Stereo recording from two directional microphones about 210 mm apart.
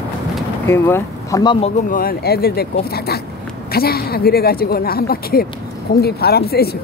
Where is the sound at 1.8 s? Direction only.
40° left (ahead or behind).